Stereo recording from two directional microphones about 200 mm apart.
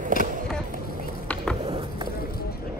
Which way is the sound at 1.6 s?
25° right (ahead or behind).